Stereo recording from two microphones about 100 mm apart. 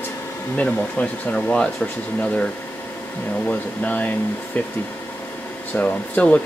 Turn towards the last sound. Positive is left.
turn(degrees=15)  # may be behind; listen again after turning